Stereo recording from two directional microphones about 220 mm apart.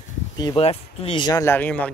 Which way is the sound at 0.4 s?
25° left (ahead or behind).